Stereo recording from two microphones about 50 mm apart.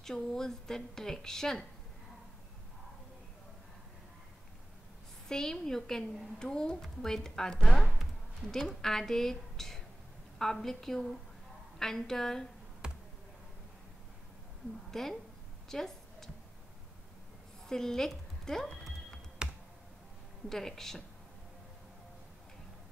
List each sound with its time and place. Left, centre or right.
0.0 s a woman's voice: centre
5.3 s a woman's voice: centre
12.8 s a sound: centre
14.9 s a woman's voice: centre
17.6 s a woman's voice: centre
19.4 s computer keyboard: centre
20.4 s a woman's voice: centre